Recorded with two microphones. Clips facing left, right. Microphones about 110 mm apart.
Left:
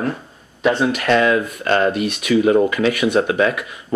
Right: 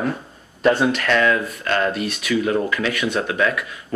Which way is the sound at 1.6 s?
30° left (ahead or behind).